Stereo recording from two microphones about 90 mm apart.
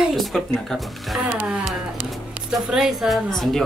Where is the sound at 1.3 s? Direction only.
15° right (ahead or behind).